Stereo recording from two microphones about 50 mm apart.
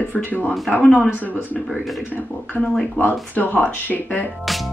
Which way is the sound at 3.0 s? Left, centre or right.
Left.